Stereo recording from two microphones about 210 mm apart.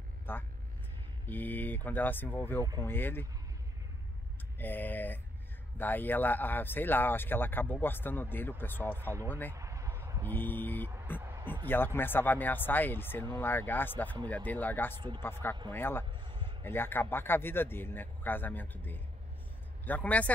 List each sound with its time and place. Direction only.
0.3 s speech: 10° left (ahead or behind)
4.6 s speech: 10° left (ahead or behind)
9.5 s a sound: 15° right (ahead or behind)
10.2 s vehicle: 10° left (ahead or behind)
11.1 s a sound: 15° right (ahead or behind)
11.6 s speech: 10° left (ahead or behind)
15.0 s speech: 20° right (ahead or behind)
15.7 s speech: 10° left (ahead or behind)
16.1 s a sound: 20° right (ahead or behind)
16.6 s speech: 10° left (ahead or behind)